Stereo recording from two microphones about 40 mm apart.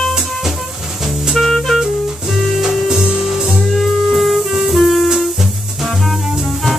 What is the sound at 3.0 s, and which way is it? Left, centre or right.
Music, centre.